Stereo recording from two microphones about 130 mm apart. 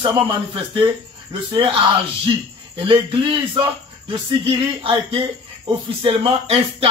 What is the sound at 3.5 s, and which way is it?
Speech, 40° right (ahead or behind).